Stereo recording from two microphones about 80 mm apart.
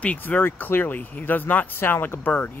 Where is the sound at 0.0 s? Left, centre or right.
Centre.